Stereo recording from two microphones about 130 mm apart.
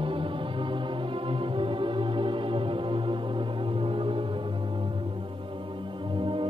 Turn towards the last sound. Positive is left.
turn(degrees=-40)  # may be behind; listen again after turning